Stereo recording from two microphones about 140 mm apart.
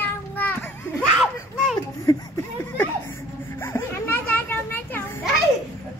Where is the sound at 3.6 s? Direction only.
15° left (ahead or behind).